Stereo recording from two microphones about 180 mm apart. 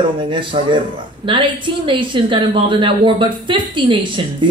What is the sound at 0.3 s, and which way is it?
A woman's voice, 30° right (ahead or behind).